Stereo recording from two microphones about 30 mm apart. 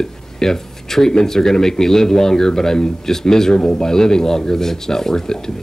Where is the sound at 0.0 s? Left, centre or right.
Centre.